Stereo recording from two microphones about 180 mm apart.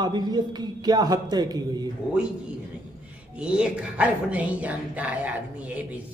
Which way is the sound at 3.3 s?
5° right (ahead or behind).